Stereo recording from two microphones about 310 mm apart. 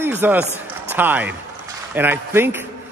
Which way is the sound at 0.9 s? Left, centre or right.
Centre.